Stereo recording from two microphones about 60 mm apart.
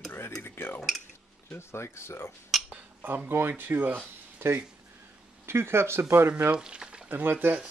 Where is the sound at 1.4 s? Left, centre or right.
Left.